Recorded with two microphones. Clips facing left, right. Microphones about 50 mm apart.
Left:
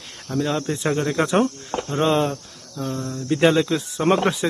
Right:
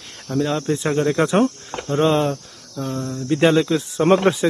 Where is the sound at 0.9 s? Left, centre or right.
Centre.